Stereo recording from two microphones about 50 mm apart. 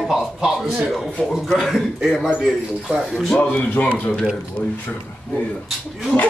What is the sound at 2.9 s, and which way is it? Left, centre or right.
Speech, centre.